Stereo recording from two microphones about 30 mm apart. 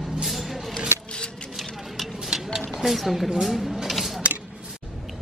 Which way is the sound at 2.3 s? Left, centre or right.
Centre.